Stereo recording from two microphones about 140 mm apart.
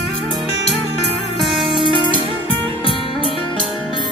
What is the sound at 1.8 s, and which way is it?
Music, 35° right (ahead or behind).